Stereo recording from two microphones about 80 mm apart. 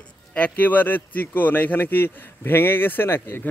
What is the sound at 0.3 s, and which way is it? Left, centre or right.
Speech, left.